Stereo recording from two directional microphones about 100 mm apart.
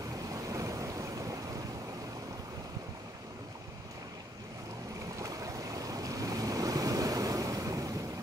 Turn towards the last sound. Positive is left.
turn(degrees=-35)  # may be behind; listen again after turning